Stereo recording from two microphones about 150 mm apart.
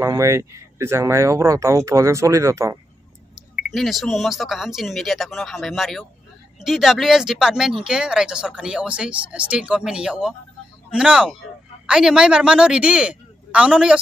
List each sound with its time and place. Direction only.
0.0 s speech: 20° right (ahead or behind)
3.3 s a man's voice: centre (ahead or behind)